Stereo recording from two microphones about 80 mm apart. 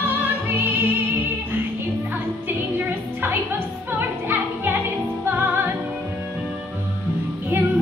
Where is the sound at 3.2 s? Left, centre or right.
Right.